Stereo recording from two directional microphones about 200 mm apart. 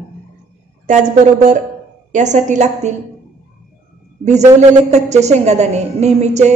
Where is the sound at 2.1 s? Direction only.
35° right (ahead or behind).